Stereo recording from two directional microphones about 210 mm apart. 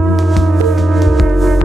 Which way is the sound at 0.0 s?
Centre (ahead or behind).